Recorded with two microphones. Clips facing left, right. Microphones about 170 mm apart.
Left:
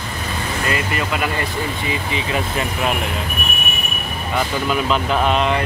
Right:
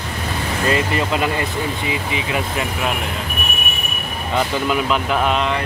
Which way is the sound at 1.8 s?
10° right (ahead or behind).